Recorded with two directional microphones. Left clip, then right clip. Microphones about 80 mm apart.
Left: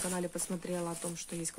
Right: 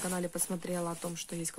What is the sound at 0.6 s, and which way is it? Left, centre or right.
Speech, right.